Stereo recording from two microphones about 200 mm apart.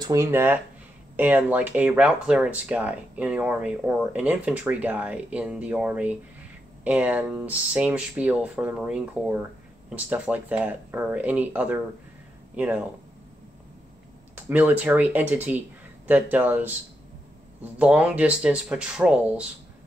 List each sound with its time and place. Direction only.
0.0 s speech: 15° right (ahead or behind)
14.3 s speech: 10° right (ahead or behind)
17.7 s speech: 5° right (ahead or behind)